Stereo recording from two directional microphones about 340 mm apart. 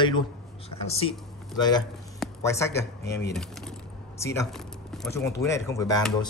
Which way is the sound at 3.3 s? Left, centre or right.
Centre.